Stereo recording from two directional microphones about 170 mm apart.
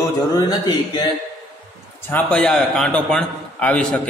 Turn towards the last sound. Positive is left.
turn(degrees=10)  # may be behind; listen again after turning